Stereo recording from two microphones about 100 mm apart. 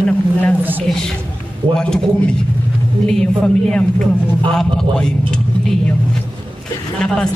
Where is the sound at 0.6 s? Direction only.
20° right (ahead or behind).